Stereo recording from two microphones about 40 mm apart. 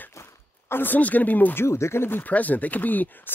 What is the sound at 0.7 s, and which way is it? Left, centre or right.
Speech, left.